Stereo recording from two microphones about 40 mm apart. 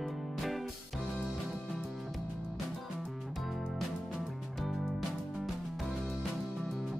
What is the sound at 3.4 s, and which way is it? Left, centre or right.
Music, centre.